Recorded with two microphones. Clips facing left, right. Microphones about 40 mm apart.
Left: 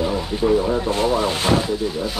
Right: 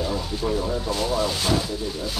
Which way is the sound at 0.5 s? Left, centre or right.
Left.